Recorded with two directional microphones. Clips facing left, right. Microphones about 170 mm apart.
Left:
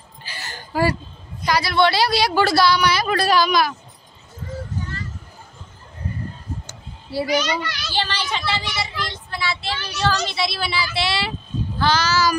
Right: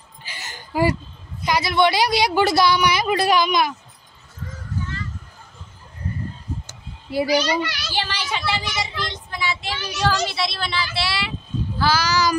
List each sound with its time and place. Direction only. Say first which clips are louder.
0.2 s a sound: left 2 dB; 20° right (ahead or behind)
1.4 s a woman's voice: even; 20° right (ahead or behind)
7.2 s a child's voice: right 1 dB; 35° right (ahead or behind)
7.5 s speech: right 1 dB; 10° right (ahead or behind)
10.3 s a woman's voice: left 1 dB; centre (ahead or behind)
11.0 s speech: left 4 dB; 20° left (ahead or behind)
11.8 s speech: left 1 dB; 10° right (ahead or behind)